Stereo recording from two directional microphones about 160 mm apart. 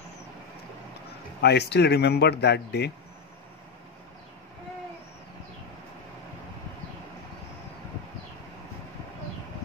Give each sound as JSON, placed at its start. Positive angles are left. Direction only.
{"t": 1.4, "sound": "speech", "side_deg": 90}